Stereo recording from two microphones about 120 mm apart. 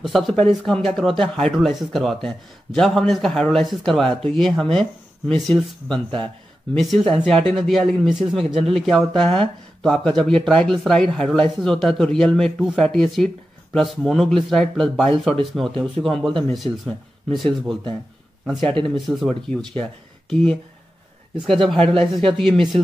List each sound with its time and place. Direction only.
0.0 s a man's voice: 5° left (ahead or behind)
18.9 s a man's voice: centre (ahead or behind)